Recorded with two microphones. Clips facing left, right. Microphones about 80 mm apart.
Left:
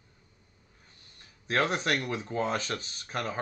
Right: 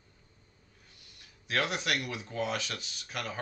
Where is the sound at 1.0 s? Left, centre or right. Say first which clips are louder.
Left 1 dB; left.